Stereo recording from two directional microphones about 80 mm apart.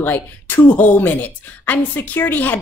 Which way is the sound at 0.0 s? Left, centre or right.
Left.